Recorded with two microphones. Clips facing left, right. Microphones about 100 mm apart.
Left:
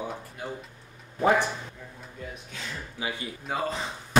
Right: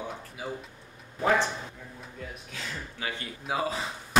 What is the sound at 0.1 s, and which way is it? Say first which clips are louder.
Speech: left 1 dB; 5° right (ahead or behind).